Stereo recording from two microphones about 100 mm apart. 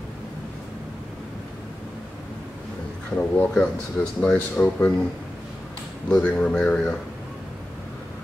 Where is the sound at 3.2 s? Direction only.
10° left (ahead or behind).